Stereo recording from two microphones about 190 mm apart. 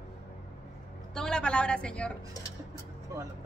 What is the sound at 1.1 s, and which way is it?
A woman's voice, 5° left (ahead or behind).